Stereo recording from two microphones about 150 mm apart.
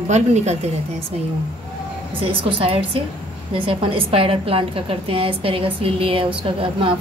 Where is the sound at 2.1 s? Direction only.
35° right (ahead or behind).